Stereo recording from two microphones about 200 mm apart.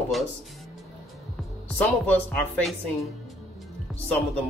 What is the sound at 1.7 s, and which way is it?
Speech, 10° left (ahead or behind).